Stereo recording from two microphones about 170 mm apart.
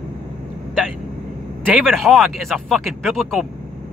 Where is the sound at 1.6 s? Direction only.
Centre (ahead or behind).